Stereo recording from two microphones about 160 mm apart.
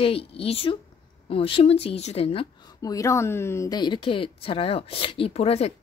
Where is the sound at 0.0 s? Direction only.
35° left (ahead or behind).